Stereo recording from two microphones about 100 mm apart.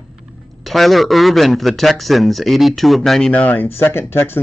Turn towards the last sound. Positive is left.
turn(degrees=20)  # may be behind; listen again after turning